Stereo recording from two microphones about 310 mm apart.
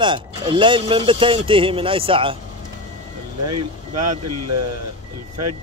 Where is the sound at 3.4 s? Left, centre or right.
Right.